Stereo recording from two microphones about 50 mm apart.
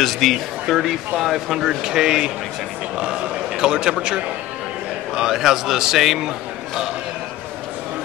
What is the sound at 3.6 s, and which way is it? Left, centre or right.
Speech, centre.